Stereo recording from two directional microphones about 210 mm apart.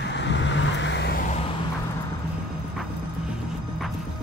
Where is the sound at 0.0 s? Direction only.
55° left (ahead or behind).